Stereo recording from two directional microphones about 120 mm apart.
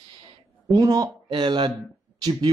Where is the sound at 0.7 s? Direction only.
30° right (ahead or behind).